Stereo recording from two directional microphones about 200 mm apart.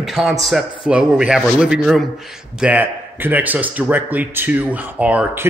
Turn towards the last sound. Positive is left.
turn(degrees=-5)  # may be behind; listen again after turning